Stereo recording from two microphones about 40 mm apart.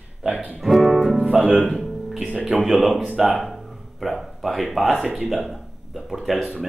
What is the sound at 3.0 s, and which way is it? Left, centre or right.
Speech, right.